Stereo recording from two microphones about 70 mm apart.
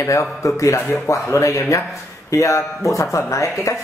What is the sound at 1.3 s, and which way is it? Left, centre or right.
Speech, left.